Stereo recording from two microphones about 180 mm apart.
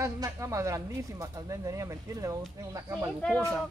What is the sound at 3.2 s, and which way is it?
Speech, 5° left (ahead or behind).